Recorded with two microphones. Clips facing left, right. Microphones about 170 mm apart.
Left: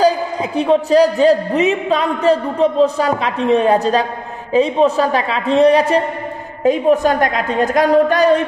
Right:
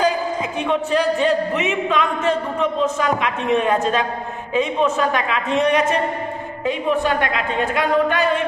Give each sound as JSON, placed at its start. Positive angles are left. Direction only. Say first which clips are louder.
{"t": 0.0, "sound": "a man's voice", "louder": "left 5 dB", "side_deg": 35}